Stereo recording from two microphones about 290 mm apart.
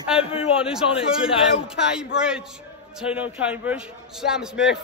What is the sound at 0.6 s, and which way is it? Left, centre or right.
Speech, centre.